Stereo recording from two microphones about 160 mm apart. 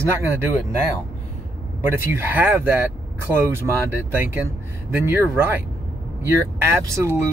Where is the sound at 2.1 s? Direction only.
10° right (ahead or behind).